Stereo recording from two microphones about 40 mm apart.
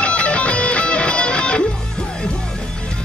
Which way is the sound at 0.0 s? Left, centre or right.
Left.